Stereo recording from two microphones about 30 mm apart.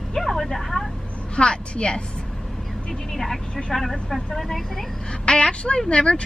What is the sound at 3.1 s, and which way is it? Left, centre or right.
Speech, centre.